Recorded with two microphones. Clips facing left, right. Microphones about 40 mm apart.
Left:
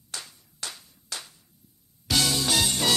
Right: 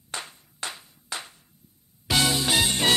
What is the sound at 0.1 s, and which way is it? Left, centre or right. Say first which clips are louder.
Music: right 5 dB; right.